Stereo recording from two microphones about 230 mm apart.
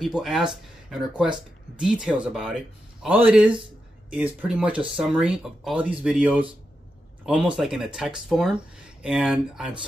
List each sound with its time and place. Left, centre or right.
0.0 s speech: centre